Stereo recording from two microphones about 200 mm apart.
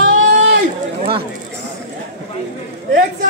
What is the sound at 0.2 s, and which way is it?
Run, 85° right.